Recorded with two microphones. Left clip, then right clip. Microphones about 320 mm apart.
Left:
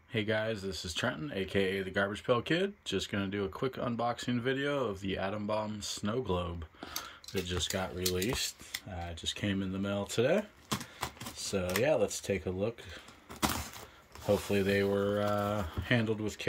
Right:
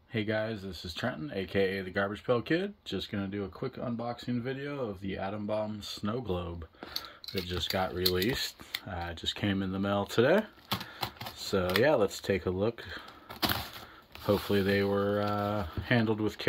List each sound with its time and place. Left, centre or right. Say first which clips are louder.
0.1 s speech: even; centre
0.6 s speech: left 3 dB; centre
0.9 s speech: even; centre
11.4 s speech: right 4 dB; centre
14.5 s speech: right 1 dB; centre